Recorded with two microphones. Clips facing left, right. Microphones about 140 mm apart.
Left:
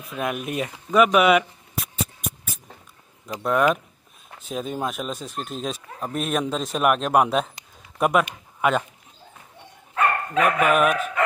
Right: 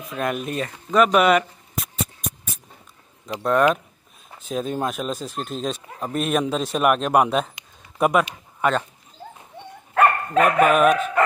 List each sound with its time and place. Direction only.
0.1 s a sound: 5° left (ahead or behind)
3.4 s speech: 5° left (ahead or behind)
9.9 s dog: 50° right (ahead or behind)
10.7 s speech: 5° left (ahead or behind)